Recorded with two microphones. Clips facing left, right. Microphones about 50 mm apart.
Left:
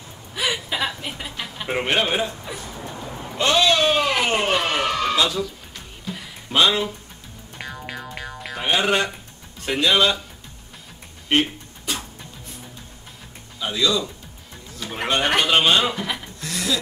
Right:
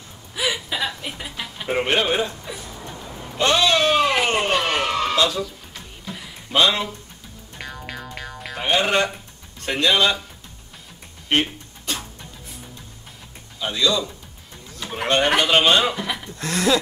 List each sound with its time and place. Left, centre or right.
0.3 s a sound: centre
0.7 s chuckle: centre
1.0 s a sound: centre
3.3 s a sound: centre
4.3 s a man's voice: centre
6.0 s music: centre
9.6 s a man's voice: centre
13.6 s a man's voice: centre
16.3 s speech: right